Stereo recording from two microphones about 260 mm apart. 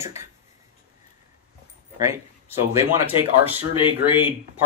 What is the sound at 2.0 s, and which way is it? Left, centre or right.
Speech, centre.